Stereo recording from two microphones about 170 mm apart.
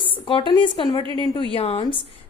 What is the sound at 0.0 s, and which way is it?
A woman's voice, 30° left (ahead or behind).